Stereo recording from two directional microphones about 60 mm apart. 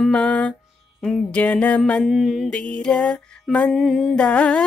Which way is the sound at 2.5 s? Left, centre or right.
Centre.